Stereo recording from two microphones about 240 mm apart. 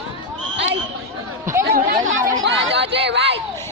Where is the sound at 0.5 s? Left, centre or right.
Right.